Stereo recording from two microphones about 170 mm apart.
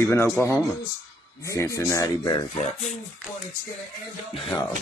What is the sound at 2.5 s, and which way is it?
Speech, 45° left (ahead or behind).